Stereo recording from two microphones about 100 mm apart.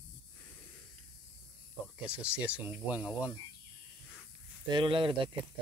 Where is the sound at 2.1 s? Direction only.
10° right (ahead or behind).